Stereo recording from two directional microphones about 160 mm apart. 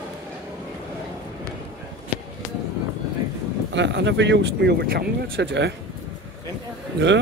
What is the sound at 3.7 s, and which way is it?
Speech, 90° right.